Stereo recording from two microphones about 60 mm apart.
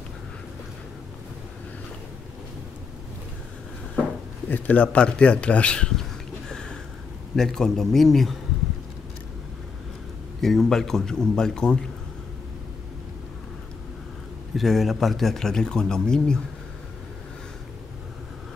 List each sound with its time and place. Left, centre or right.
4.5 s speech: left
6.5 s a sound: centre
7.3 s speech: centre
10.4 s a man's voice: centre
14.5 s speech: centre